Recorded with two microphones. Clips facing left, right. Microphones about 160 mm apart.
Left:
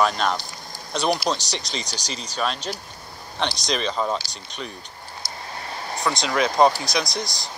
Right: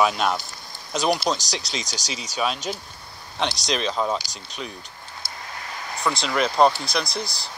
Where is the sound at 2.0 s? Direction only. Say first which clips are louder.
Even; 90° right.